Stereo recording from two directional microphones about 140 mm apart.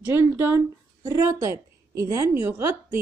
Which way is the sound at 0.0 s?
15° right (ahead or behind).